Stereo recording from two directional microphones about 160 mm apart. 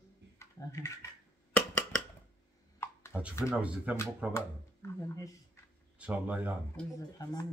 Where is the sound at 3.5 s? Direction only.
10° right (ahead or behind).